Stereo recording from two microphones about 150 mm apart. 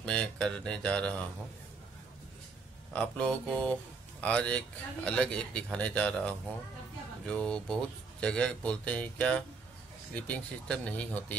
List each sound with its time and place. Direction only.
0.0 s a man's voice: 5° left (ahead or behind)
2.9 s a man's voice: 5° left (ahead or behind)